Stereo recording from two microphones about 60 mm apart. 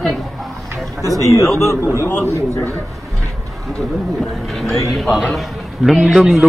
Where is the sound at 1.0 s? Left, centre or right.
Right.